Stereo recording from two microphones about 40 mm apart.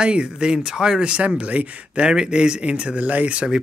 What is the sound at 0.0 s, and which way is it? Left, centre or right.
Speech, right.